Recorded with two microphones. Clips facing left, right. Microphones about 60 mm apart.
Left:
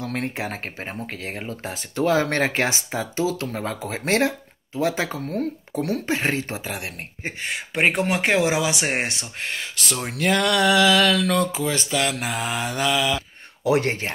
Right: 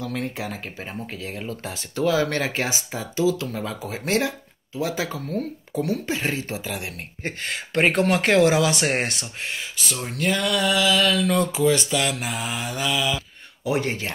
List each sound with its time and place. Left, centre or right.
0.0 s speech: left
1.4 s speech: left
6.9 s speech: left
9.2 s speech: left
10.0 s a sound: left
11.5 s speech: left